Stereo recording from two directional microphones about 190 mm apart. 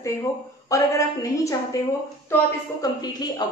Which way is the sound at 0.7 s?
15° left (ahead or behind).